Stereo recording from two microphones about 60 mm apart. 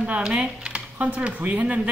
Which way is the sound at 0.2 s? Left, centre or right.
Centre.